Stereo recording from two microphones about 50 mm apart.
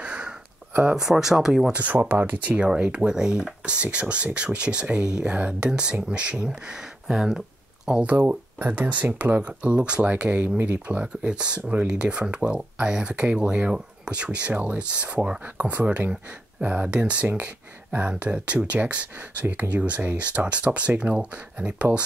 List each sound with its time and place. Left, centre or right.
0.0 s a sound: right
0.9 s speech: centre
1.7 s speech: right
2.0 s speech: right
2.7 s speech: centre
8.0 s speech: right
9.5 s speech: right